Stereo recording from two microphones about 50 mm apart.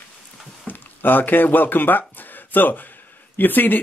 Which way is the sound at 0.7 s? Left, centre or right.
Left.